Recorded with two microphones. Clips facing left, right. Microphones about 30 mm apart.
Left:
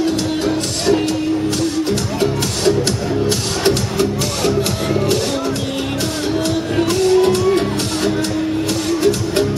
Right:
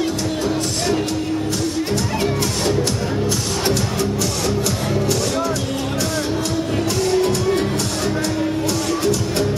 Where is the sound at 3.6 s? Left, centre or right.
Left.